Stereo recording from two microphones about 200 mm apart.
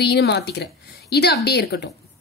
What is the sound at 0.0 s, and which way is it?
Speech, 55° left (ahead or behind).